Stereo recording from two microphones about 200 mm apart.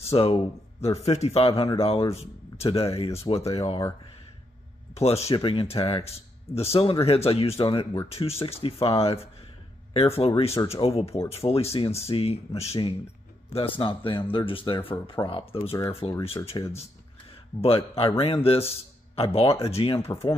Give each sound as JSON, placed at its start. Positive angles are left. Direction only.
{"t": 0.0, "sound": "speech", "side_deg": 30}
{"t": 4.9, "sound": "speech", "side_deg": 30}